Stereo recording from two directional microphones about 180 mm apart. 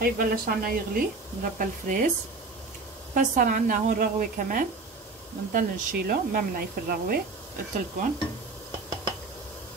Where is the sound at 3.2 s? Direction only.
45° right (ahead or behind).